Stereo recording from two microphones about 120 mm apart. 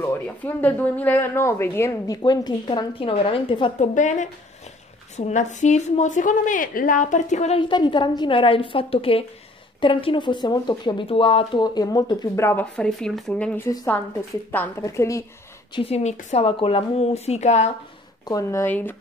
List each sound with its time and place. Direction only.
0.4 s a woman's voice: 15° left (ahead or behind)
2.2 s a woman's voice: 35° left (ahead or behind)
3.8 s a woman's voice: 90° left
5.1 s a woman's voice: 75° left (ahead or behind)
7.5 s a woman's voice: 40° left (ahead or behind)
11.1 s speech: 50° left (ahead or behind)
12.4 s a woman's voice: 20° left (ahead or behind)
12.7 s a woman's voice: 5° left (ahead or behind)
14.8 s a woman's voice: 25° left (ahead or behind)
15.7 s speech: 55° left (ahead or behind); by 16.4 s 70° left (ahead or behind)
16.4 s speech: 50° left (ahead or behind); by 17.6 s 70° left (ahead or behind)
18.2 s a woman's voice: 25° left (ahead or behind)
18.7 s a woman's voice: 15° left (ahead or behind)